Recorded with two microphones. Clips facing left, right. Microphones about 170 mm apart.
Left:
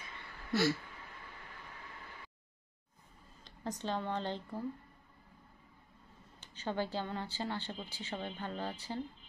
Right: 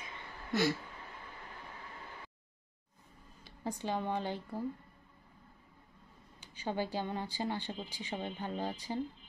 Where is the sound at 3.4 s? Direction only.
10° right (ahead or behind).